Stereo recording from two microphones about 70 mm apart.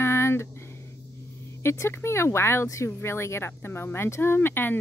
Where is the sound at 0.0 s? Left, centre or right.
Left.